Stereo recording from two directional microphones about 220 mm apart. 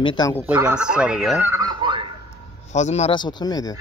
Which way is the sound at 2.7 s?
30° left (ahead or behind).